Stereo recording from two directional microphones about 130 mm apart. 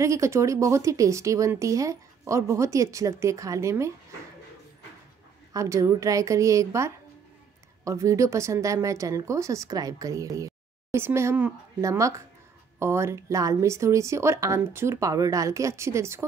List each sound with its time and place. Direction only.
0.0 s speech: 25° right (ahead or behind)
5.5 s speech: 25° right (ahead or behind)